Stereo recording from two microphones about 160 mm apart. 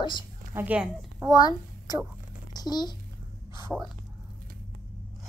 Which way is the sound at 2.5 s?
25° left (ahead or behind).